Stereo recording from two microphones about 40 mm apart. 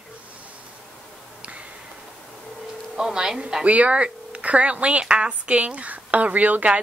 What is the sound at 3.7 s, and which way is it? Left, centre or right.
A woman's voice, right.